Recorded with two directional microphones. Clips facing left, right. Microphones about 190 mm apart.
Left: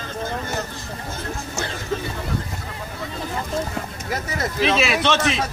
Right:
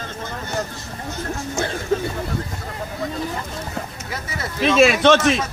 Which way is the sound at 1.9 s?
50° right (ahead or behind).